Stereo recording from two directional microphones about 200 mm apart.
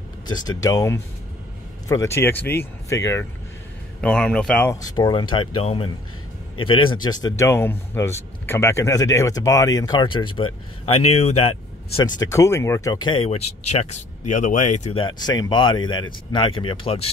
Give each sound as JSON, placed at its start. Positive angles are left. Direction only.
{"t": 0.3, "sound": "speech", "side_deg": 20}
{"t": 4.9, "sound": "speech", "side_deg": 20}